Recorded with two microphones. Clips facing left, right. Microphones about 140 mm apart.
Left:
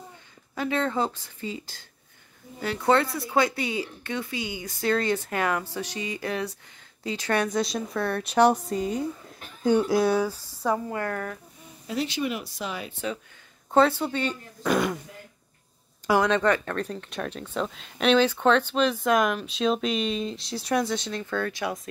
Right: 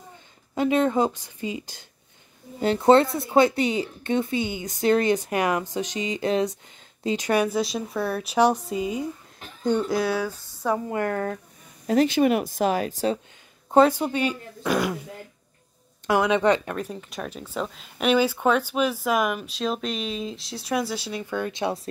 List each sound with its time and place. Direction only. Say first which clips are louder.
0.6 s a woman's voice: right 5 dB; 20° right (ahead or behind)
9.6 s speech: left 2 dB; 5° left (ahead or behind)
10.0 s speech: left 2 dB; 15° left (ahead or behind)
10.9 s speech: right 4 dB; 25° right (ahead or behind)
11.9 s speech: right 9 dB; 50° right (ahead or behind)
13.7 s a woman's voice: right 3 dB; 15° right (ahead or behind)
14.6 s speech: even; centre (ahead or behind)
16.1 s a woman's voice: right 2 dB; 5° right (ahead or behind)
16.8 s speech: left 1 dB; 5° right (ahead or behind); by 21.8 s 25° right (ahead or behind)